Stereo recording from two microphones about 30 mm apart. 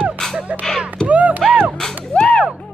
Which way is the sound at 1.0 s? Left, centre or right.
Right.